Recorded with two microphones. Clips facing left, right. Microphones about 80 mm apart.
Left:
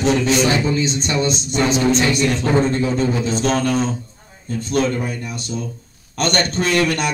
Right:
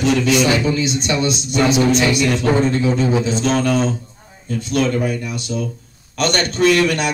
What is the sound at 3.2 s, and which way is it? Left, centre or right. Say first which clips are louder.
Speech: right 1 dB; left.